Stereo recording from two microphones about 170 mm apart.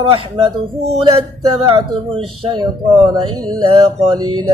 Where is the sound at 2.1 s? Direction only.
30° right (ahead or behind).